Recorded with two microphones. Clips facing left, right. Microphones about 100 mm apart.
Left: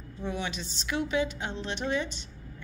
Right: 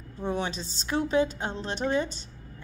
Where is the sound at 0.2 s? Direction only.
35° right (ahead or behind).